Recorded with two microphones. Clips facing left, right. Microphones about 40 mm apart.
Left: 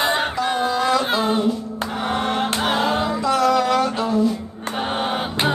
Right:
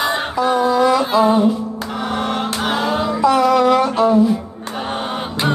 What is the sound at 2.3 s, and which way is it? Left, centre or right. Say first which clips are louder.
Choir: right 1 dB; centre.